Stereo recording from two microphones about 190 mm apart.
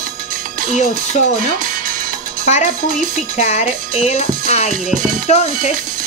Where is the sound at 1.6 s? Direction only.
45° right (ahead or behind).